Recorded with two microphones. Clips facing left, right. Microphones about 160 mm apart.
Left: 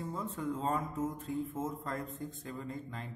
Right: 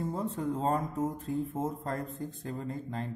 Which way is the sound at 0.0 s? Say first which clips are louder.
Right 5 dB; 35° right (ahead or behind).